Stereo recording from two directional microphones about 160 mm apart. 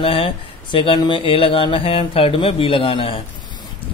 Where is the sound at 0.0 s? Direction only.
35° left (ahead or behind).